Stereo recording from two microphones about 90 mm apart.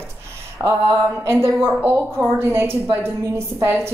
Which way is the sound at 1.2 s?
30° right (ahead or behind).